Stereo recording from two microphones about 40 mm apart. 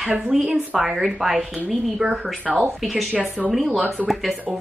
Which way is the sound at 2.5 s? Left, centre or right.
Centre.